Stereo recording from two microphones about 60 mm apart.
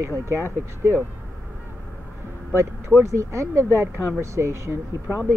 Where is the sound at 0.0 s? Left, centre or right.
Right.